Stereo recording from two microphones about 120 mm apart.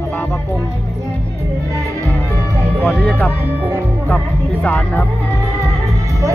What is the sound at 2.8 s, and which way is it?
Music, 5° left (ahead or behind).